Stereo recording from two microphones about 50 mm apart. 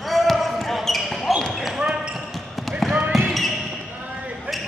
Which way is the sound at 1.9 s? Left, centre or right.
Right.